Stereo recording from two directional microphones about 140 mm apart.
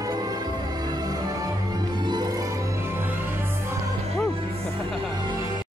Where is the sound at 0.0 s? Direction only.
25° right (ahead or behind).